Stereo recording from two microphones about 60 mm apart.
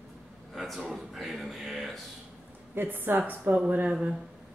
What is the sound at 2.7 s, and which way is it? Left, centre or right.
A woman's voice, right.